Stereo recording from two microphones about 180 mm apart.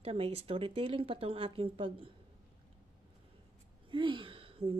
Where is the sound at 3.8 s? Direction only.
25° right (ahead or behind).